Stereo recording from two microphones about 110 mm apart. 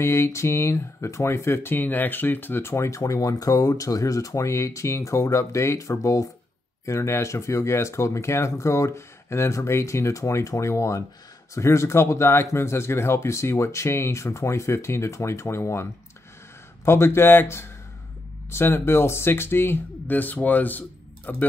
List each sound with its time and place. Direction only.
0.0 s speech: 25° left (ahead or behind)